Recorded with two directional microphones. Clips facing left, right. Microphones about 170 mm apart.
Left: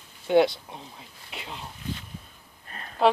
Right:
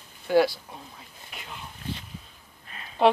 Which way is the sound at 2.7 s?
45° left (ahead or behind).